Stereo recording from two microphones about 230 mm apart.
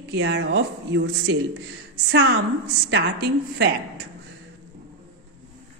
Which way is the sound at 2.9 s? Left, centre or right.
Right.